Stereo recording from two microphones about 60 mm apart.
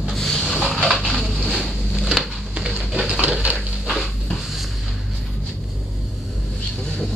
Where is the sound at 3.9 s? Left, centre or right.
Centre.